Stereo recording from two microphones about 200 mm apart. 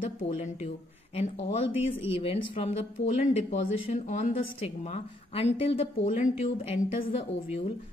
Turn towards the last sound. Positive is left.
turn(degrees=30)  # may be behind; listen again after turning